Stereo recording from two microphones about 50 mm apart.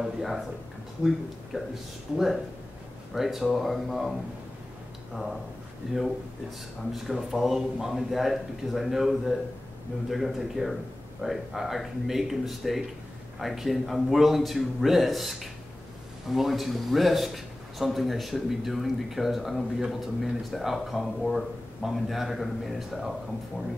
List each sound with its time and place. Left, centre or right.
0.0 s speech: centre
1.5 s speech: centre
5.8 s speech: centre
7.2 s speech: centre